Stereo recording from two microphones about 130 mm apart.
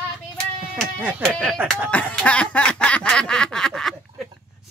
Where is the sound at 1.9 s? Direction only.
10° left (ahead or behind).